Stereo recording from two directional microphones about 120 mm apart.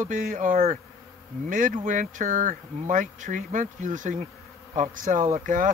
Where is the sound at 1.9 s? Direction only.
90° right.